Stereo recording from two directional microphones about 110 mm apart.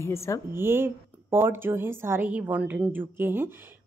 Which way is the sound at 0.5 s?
20° right (ahead or behind).